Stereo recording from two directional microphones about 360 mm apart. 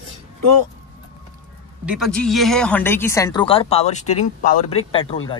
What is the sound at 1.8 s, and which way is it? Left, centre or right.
A man's voice, centre.